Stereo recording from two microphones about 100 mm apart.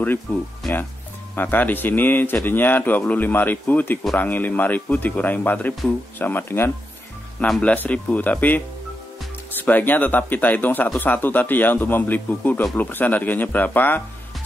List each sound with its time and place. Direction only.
0.3 s speech: 15° left (ahead or behind)
7.3 s speech: 5° left (ahead or behind)
9.7 s speech: 15° left (ahead or behind)